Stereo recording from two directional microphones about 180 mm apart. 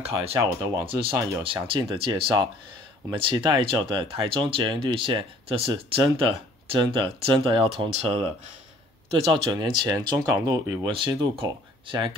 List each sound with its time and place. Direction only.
0.3 s speech: 15° right (ahead or behind)
1.4 s speech: 30° right (ahead or behind)